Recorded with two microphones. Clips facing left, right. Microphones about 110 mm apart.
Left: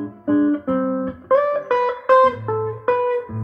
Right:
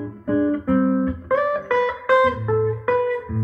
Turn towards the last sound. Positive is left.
turn(degrees=35)  # may be behind; listen again after turning